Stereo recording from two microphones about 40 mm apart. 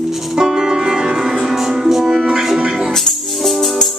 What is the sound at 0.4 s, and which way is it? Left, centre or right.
Music, centre.